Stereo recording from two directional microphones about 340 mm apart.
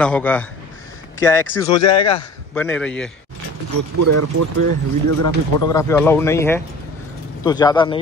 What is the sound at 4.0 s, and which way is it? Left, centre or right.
Speech, right.